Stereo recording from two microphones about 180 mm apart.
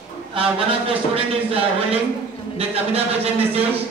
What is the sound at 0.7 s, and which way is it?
Speech, 30° right (ahead or behind).